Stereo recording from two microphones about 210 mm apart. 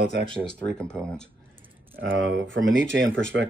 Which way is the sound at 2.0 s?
65° right (ahead or behind).